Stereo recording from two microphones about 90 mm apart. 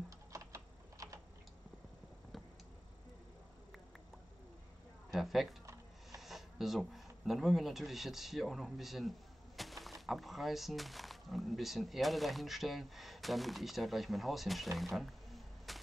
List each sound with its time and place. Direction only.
0.3 s typing: 35° right (ahead or behind)
5.1 s speech: centre (ahead or behind)